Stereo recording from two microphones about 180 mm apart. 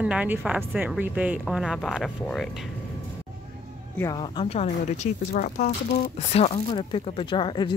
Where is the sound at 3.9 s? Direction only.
20° left (ahead or behind); by 5.7 s 45° left (ahead or behind).